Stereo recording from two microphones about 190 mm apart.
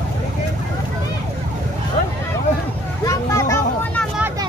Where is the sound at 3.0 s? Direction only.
15° left (ahead or behind).